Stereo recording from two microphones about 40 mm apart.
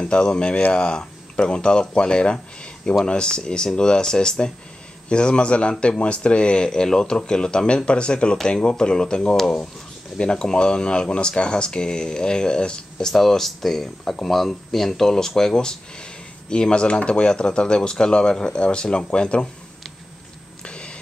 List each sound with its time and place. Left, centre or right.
0.0 s speech: left
13.1 s speech: centre; by 19.4 s left
20.6 s a sound: left